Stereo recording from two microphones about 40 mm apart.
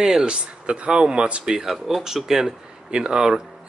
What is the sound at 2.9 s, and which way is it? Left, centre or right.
Speech, centre.